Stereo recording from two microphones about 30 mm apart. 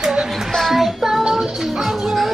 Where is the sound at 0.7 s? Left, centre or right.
Centre.